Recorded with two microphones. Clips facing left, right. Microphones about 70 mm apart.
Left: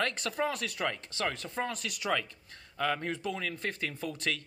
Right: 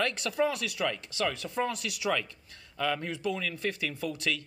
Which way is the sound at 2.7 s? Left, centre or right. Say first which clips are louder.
Even; left.